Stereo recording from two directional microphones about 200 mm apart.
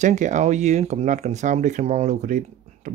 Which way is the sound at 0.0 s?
35° right (ahead or behind).